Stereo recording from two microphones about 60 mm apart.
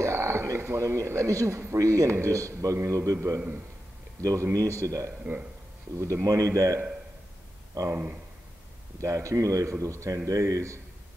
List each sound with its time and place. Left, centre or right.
0.0 s a man's voice: right
5.2 s speech: right
6.2 s speech: right
7.9 s speech: right
9.0 s speech: right